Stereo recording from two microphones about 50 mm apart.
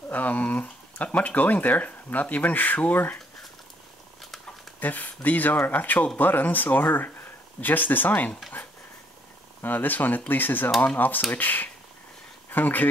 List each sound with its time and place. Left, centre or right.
0.1 s speech: left
4.7 s speech: left
9.6 s speech: left